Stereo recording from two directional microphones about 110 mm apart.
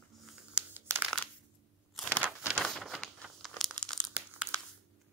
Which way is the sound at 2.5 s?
Centre (ahead or behind).